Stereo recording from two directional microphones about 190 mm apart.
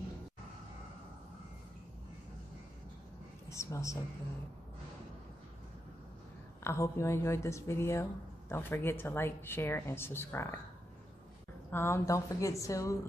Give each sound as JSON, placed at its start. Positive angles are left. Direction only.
{"t": 3.4, "sound": "speech", "side_deg": 15}
{"t": 6.6, "sound": "speech", "side_deg": 15}
{"t": 11.7, "sound": "speech", "side_deg": 15}